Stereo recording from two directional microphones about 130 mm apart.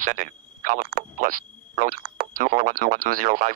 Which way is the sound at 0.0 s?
80° right.